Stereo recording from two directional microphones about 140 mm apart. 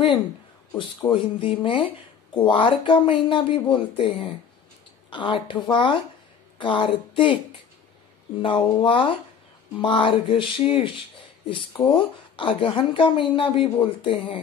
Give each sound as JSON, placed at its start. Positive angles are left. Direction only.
{"t": 1.1, "sound": "speech", "side_deg": 35}
{"t": 8.4, "sound": "speech", "side_deg": 35}